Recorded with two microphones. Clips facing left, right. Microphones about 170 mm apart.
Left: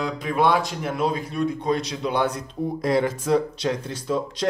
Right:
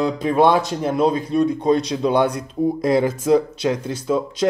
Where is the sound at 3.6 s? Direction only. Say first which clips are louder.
Right 4 dB; 10° right (ahead or behind).